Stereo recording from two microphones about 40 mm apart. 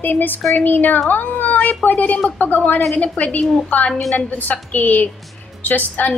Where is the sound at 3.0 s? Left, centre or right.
Left.